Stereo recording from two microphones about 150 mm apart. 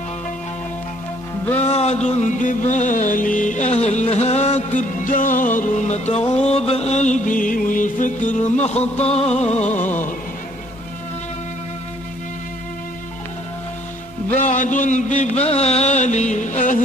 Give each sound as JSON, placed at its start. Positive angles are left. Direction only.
{"t": 1.6, "sound": "music", "side_deg": 45}
{"t": 5.6, "sound": "music", "side_deg": 50}
{"t": 9.8, "sound": "a man's voice", "side_deg": 55}
{"t": 14.4, "sound": "a man's voice", "side_deg": 60}
{"t": 15.4, "sound": "music", "side_deg": 45}